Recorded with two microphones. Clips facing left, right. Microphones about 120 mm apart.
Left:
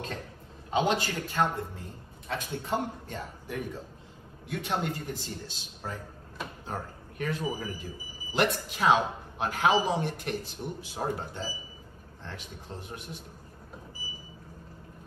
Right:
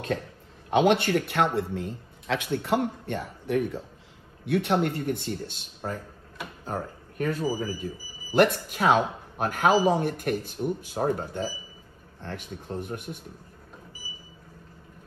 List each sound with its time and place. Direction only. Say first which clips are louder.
0.7 s speech: right 6 dB; 65° right (ahead or behind)
6.6 s a sound: right 8 dB; 40° right (ahead or behind)
7.5 s speech: right 6 dB; 40° right (ahead or behind)